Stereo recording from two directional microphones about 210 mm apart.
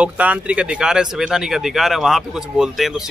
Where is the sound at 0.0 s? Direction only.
5° right (ahead or behind).